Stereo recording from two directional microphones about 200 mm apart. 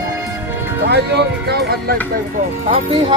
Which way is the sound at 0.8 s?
55° right (ahead or behind).